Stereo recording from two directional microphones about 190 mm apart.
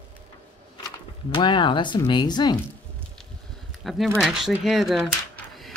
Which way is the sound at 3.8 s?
Centre (ahead or behind).